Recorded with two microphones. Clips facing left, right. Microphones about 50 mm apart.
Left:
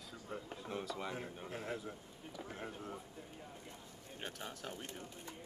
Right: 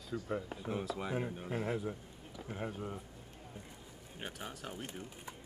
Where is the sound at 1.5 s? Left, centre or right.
Centre.